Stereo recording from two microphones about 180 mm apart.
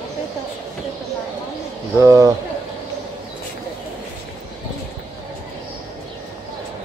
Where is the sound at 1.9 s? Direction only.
15° right (ahead or behind).